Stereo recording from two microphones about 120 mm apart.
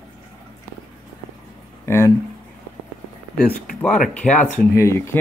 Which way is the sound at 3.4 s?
10° left (ahead or behind).